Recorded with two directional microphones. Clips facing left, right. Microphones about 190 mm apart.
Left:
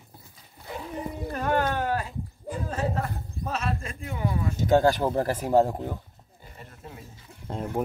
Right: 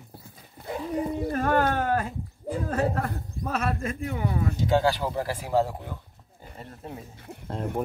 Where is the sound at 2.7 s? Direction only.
55° right (ahead or behind).